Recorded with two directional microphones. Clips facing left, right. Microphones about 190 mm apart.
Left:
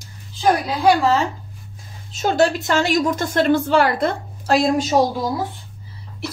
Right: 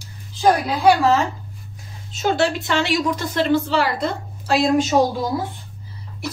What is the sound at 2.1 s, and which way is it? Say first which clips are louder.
A woman's voice: left 2 dB; 45° left (ahead or behind).